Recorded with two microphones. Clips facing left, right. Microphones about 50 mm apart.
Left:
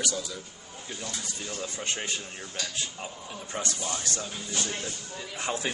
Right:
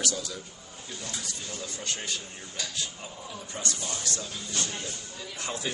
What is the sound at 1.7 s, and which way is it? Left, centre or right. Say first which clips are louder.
Speech: left 1 dB; left.